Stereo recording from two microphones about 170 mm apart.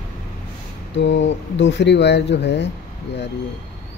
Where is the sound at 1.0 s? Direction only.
90° left.